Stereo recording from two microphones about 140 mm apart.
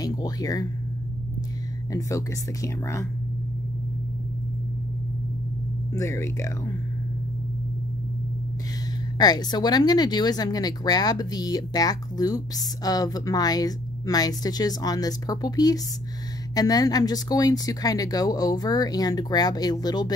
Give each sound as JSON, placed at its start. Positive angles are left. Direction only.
{"t": 0.0, "sound": "speech", "side_deg": 25}
{"t": 1.9, "sound": "speech", "side_deg": 25}
{"t": 5.9, "sound": "speech", "side_deg": 20}
{"t": 9.2, "sound": "speech", "side_deg": 30}